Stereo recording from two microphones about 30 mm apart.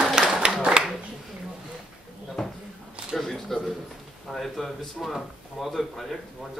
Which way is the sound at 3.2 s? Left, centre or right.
Centre.